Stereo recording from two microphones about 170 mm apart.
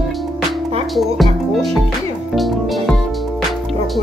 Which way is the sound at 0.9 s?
Centre (ahead or behind).